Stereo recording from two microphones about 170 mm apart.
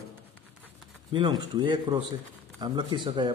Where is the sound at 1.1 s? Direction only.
25° right (ahead or behind).